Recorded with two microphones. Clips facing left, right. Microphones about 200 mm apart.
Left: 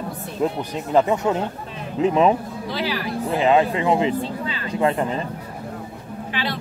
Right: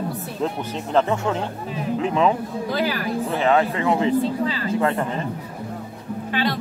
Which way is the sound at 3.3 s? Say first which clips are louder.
Left 3 dB; 15° left (ahead or behind).